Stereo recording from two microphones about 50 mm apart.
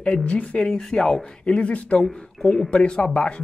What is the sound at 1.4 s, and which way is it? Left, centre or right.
Speech, left.